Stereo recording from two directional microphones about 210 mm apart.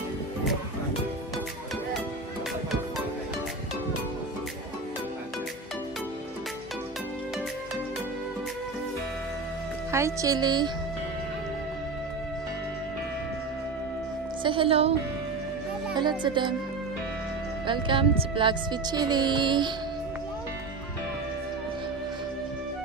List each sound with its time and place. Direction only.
9.8 s speech: 15° right (ahead or behind)
14.4 s music: 25° right (ahead or behind)
16.0 s speech: 20° right (ahead or behind)
17.6 s speech: 25° right (ahead or behind)